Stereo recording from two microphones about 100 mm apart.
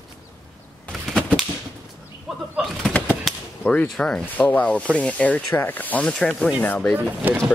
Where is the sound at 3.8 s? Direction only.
5° left (ahead or behind).